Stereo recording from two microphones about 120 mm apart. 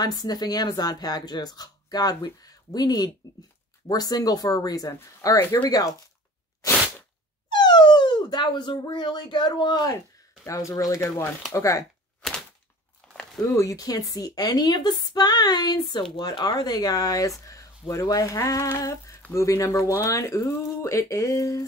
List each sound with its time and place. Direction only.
0.0 s a woman's voice: 35° left (ahead or behind)
5.3 s speech: 20° left (ahead or behind)
5.6 s a woman's voice: 30° left (ahead or behind)
7.5 s speech: 35° left (ahead or behind)
10.4 s speech: 25° left (ahead or behind)
13.0 s a sound: 5° left (ahead or behind)
13.4 s a woman's voice: 30° left (ahead or behind)